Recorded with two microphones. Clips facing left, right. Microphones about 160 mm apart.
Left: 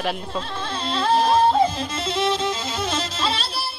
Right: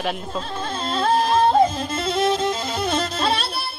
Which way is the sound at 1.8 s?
50° right (ahead or behind).